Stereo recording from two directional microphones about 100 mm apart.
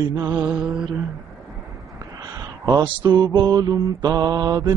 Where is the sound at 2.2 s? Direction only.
40° right (ahead or behind).